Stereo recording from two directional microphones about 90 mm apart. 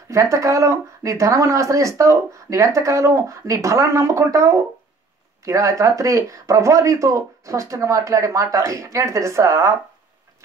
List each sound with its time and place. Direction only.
0.1 s speech: 35° right (ahead or behind)